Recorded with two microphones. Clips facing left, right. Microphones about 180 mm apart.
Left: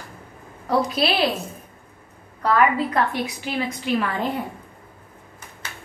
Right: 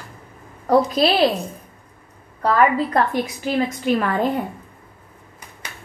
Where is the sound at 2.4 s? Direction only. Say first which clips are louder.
Right 2 dB; 40° right (ahead or behind).